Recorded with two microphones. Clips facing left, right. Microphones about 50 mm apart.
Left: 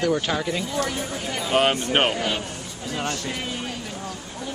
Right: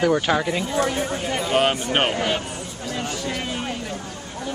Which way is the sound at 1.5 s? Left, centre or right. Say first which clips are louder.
Left 1 dB; centre.